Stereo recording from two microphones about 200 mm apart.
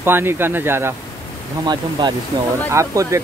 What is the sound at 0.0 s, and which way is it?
Speech, 10° right (ahead or behind).